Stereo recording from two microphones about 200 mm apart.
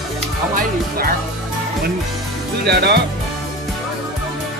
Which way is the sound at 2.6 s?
55° right (ahead or behind).